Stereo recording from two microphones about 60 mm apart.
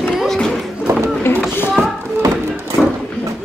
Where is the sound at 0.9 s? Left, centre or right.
Right.